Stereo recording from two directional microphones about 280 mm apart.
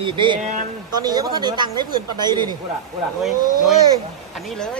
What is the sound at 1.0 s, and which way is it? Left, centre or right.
Speech, centre.